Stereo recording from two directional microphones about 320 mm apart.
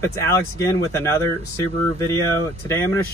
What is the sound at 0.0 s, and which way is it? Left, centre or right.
Speech, centre.